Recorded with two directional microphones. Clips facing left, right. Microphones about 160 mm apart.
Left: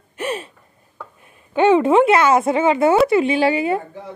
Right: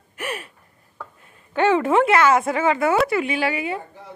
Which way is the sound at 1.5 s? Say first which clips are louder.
Left 4 dB; 20° left (ahead or behind).